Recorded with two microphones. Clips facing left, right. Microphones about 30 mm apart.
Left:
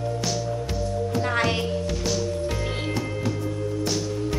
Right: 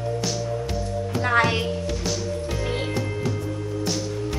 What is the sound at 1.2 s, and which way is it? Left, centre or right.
Music, centre.